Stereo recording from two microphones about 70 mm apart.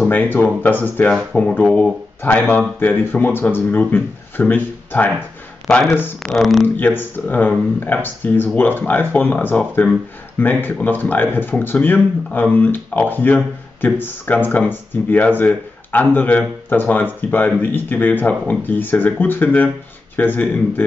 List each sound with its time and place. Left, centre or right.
0.1 s speech: left
1.6 s speech: centre
2.2 s speech: left
5.7 s speech: centre
6.2 s speech: centre
6.8 s speech: left